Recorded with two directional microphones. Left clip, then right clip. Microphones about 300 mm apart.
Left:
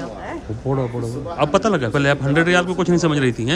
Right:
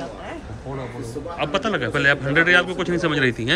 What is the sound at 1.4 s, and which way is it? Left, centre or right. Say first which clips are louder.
A man's voice: left 5 dB; centre.